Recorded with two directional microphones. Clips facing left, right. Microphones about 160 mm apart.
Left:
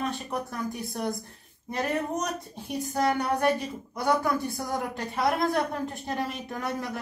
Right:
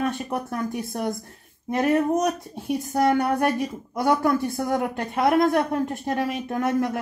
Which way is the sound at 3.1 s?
55° right (ahead or behind).